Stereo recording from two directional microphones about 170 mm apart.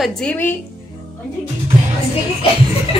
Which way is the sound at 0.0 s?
5° left (ahead or behind).